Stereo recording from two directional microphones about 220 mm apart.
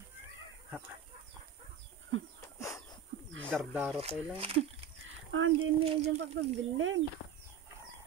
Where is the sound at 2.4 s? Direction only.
15° left (ahead or behind).